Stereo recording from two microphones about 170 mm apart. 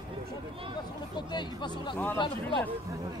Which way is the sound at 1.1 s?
25° left (ahead or behind).